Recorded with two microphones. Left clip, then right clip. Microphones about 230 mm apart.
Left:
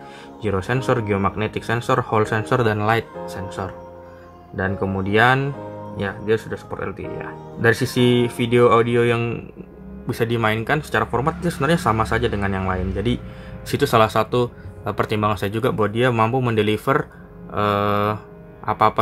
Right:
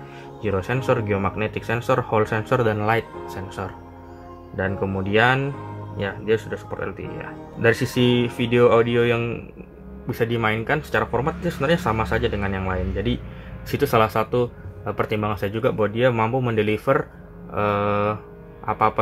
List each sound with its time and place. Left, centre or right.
0.4 s speech: centre